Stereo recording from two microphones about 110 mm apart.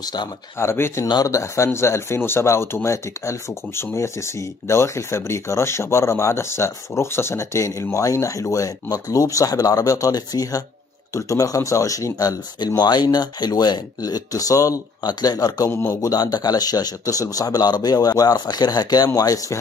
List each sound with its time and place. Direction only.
0.0 s speech: 40° left (ahead or behind)
0.6 s speech: 20° left (ahead or behind)
1.0 s speech: 35° left (ahead or behind)
15.7 s speech: 25° left (ahead or behind)
16.1 s speech: 35° left (ahead or behind)